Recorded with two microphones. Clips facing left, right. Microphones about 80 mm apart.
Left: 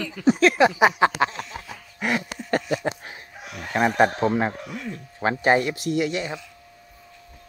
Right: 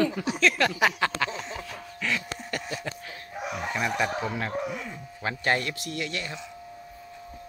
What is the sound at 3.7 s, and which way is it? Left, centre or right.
Speech, left.